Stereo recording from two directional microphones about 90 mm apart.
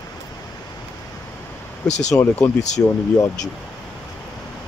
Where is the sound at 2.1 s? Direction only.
35° left (ahead or behind).